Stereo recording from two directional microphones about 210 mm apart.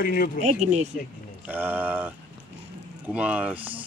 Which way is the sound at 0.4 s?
35° right (ahead or behind).